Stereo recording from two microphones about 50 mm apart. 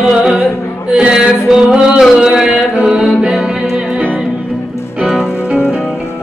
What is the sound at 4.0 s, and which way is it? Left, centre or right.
Music, right.